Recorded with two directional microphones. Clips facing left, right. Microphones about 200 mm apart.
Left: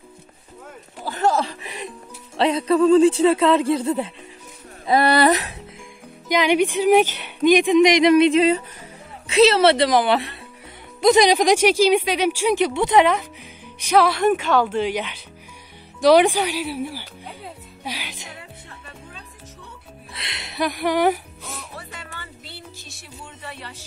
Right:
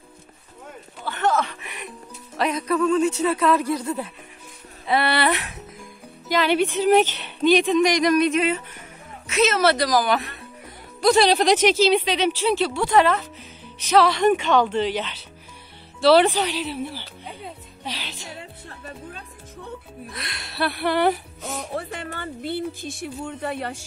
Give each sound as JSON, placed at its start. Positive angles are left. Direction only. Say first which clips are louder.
{"t": 1.0, "sound": "music", "louder": "left 2 dB", "side_deg": 35}
{"t": 2.3, "sound": "speech", "louder": "left 5 dB", "side_deg": 30}
{"t": 4.8, "sound": "speech", "louder": "left 5 dB", "side_deg": 40}
{"t": 6.2, "sound": "speech", "louder": "left 2 dB", "side_deg": 15}
{"t": 11.0, "sound": "a woman's voice", "louder": "left 2 dB", "side_deg": 20}
{"t": 20.1, "sound": "speech", "louder": "left 1 dB", "side_deg": 25}
{"t": 21.5, "sound": "a sound", "louder": "right 12 dB", "side_deg": -50}